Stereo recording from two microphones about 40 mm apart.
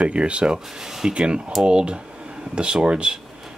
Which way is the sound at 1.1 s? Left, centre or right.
Right.